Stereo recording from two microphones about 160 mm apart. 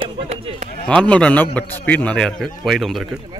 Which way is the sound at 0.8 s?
10° left (ahead or behind).